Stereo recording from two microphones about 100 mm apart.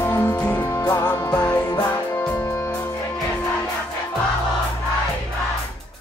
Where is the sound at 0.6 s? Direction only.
35° left (ahead or behind).